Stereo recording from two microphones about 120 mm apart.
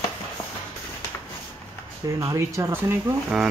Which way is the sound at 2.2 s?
25° right (ahead or behind).